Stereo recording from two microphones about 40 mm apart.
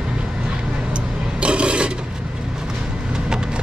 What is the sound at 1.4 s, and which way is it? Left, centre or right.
Filing, right.